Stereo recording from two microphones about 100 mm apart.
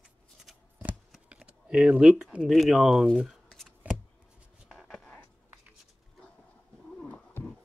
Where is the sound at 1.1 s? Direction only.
10° right (ahead or behind).